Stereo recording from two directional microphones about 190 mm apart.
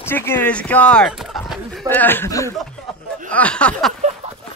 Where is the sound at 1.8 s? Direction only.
10° left (ahead or behind).